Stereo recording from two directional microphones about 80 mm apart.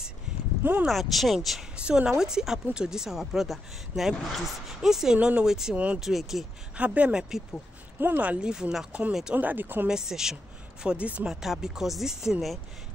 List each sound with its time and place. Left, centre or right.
0.8 s speech: centre
1.8 s speech: centre
6.8 s speech: centre
8.0 s speech: right
9.8 s speech: centre
11.2 s speech: centre